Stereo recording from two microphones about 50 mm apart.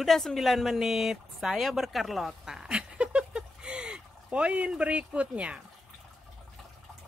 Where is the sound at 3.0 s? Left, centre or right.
Right.